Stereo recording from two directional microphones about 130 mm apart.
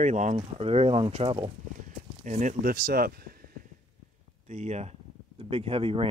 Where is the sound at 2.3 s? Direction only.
70° right (ahead or behind).